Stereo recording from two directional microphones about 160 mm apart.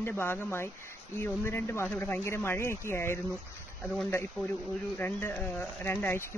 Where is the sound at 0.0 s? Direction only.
15° left (ahead or behind).